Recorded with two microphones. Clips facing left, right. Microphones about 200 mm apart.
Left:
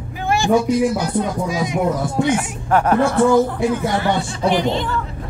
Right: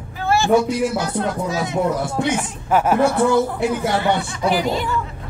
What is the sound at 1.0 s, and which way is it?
Speech, 15° left (ahead or behind).